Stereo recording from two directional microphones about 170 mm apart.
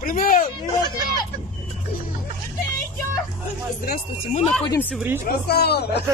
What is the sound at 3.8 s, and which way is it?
Speech, 60° left (ahead or behind).